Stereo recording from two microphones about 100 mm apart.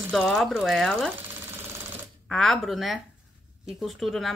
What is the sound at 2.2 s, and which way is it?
Speech, 5° left (ahead or behind).